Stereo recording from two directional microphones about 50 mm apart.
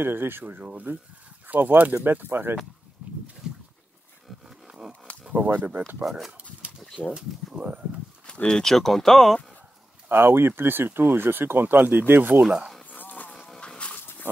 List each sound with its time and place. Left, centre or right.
0.0 s speech: right
3.0 s a sound: right
4.6 s a sound: centre
5.3 s speech: right
6.0 s speech: centre
7.0 s speech: left
7.5 s speech: right
8.5 s speech: centre
10.0 s speech: right
12.4 s speech: centre
12.9 s music: left
13.6 s a sound: left
13.9 s dog: left